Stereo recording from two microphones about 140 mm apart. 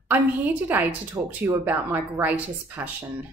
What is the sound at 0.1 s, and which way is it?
A woman's voice, 10° right (ahead or behind).